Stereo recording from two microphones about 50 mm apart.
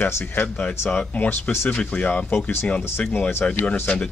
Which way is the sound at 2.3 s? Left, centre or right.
Left.